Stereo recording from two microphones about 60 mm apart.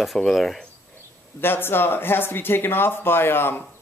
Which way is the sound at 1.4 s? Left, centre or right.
Left.